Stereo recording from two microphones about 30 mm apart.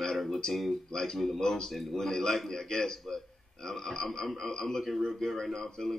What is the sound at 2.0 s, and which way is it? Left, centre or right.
Speech, centre.